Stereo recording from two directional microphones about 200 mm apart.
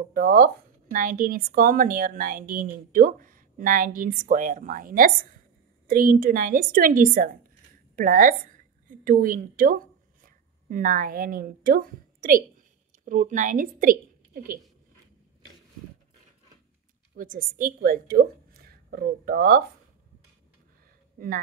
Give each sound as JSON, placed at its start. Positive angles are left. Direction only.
{"t": 0.1, "sound": "a woman's voice", "side_deg": -45}
{"t": 17.1, "sound": "a woman's voice", "side_deg": -45}